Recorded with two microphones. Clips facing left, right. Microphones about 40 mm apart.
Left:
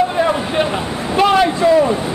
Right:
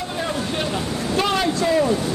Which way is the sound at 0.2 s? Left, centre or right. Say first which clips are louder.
Left 8 dB; left.